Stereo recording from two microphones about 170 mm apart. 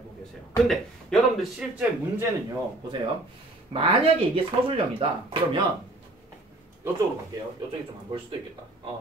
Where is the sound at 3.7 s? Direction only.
35° right (ahead or behind).